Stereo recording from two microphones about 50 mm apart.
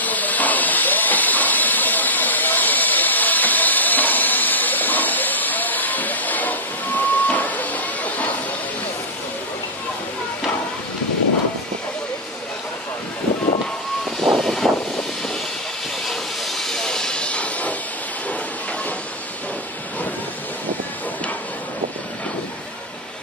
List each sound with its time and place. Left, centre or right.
0.0 s hiss: left
14.2 s vehicle: centre
16.1 s hiss: centre; by 17.7 s left